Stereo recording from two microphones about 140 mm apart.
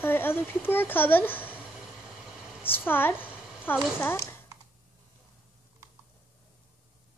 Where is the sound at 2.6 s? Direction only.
15° left (ahead or behind).